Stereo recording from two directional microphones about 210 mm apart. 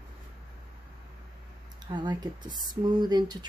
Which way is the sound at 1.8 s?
20° right (ahead or behind).